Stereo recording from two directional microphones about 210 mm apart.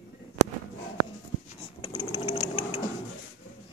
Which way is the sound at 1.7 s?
25° left (ahead or behind).